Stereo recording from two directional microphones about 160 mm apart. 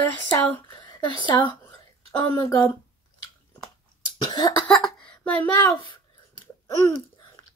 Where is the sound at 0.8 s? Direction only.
30° left (ahead or behind).